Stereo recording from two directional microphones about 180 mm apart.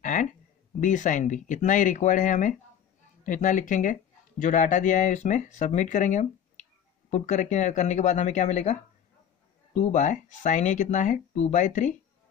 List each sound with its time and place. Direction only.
0.0 s a sound: 45° left (ahead or behind)
0.7 s speech: 45° left (ahead or behind)
9.8 s speech: 40° left (ahead or behind)